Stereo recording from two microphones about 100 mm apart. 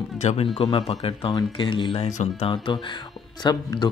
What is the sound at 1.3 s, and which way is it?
Speech, 55° left (ahead or behind).